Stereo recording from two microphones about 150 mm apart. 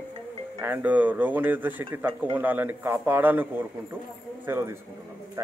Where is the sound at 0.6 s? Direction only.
10° right (ahead or behind).